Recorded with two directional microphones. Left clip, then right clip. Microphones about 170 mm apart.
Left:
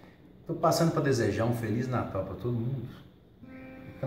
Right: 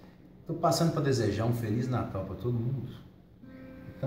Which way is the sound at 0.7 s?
10° left (ahead or behind).